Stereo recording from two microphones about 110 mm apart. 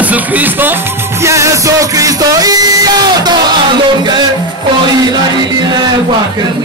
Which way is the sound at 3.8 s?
45° right (ahead or behind).